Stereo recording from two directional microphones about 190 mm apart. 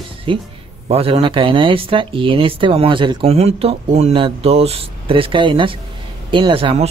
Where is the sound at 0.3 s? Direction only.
25° right (ahead or behind).